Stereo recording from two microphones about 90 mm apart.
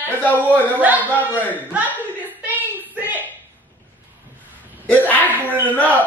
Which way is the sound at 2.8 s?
20° right (ahead or behind).